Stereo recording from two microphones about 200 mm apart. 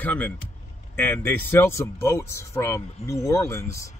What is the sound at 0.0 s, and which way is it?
Speech, 5° left (ahead or behind).